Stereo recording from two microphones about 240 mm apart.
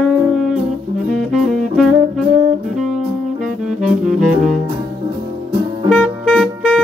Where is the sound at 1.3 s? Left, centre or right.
Centre.